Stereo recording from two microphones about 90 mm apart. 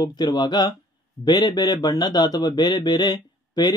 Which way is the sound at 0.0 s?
50° left (ahead or behind).